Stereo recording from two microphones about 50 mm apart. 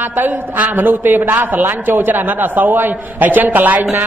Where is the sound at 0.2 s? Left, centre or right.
Right.